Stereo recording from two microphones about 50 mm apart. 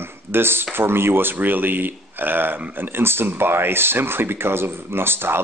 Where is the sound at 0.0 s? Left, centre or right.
Right.